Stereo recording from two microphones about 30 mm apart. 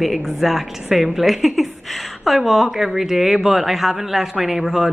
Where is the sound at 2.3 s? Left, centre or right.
Centre.